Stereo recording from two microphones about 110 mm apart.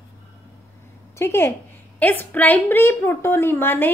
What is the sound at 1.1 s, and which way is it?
A woman's voice, 25° left (ahead or behind).